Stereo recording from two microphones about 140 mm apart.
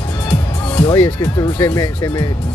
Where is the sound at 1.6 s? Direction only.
25° left (ahead or behind).